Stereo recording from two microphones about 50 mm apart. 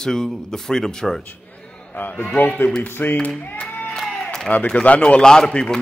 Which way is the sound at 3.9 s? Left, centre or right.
Centre.